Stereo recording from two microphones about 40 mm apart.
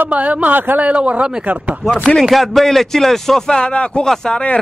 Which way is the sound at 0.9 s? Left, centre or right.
Right.